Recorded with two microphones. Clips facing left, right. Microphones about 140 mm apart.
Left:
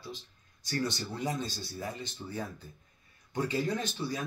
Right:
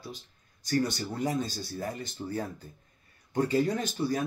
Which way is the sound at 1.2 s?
45° right (ahead or behind).